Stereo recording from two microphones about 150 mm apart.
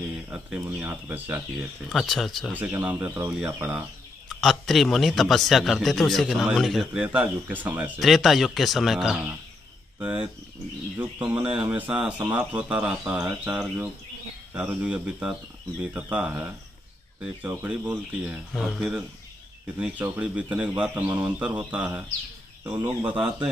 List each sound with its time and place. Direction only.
0.7 s speech: 10° right (ahead or behind)
1.9 s a man's voice: centre (ahead or behind)
2.5 s speech: 10° right (ahead or behind)
4.4 s a man's voice: centre (ahead or behind)
18.5 s a man's voice: centre (ahead or behind)